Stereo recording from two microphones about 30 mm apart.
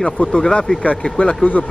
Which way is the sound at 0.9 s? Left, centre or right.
Centre.